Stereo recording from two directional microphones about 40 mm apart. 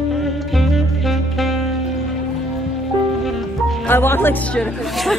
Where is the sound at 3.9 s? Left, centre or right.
Left.